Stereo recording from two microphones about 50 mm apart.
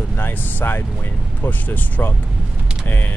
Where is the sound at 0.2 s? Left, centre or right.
Left.